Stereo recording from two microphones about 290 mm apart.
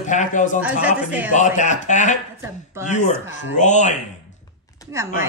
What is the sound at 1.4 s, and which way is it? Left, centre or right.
Speech, left.